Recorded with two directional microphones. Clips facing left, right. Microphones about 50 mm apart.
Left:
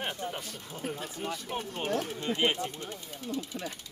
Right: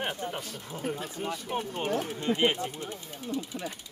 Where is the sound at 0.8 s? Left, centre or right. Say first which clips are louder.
Right 2 dB; centre.